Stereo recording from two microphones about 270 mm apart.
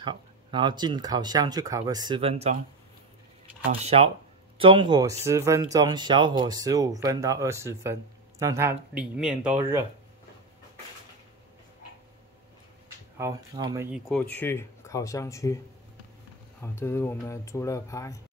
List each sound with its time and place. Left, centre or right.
0.0 s speech: centre
3.8 s speech: right
13.2 s speech: centre
13.9 s speech: centre
16.6 s speech: centre